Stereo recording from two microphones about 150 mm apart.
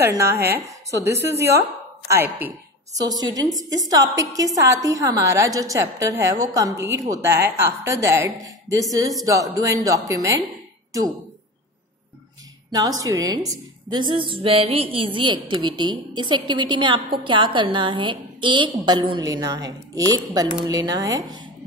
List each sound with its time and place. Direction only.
0.0 s a woman's voice: 20° right (ahead or behind)
3.0 s a woman's voice: 25° right (ahead or behind)
13.0 s a woman's voice: 25° right (ahead or behind)